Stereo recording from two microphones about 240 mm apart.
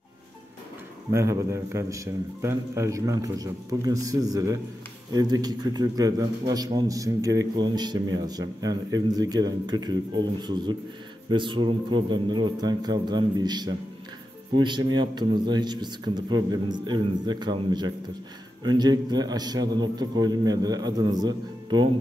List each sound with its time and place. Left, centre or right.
1.1 s a man's voice: centre